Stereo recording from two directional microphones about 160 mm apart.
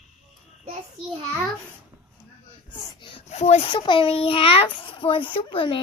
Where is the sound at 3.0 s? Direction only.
40° left (ahead or behind).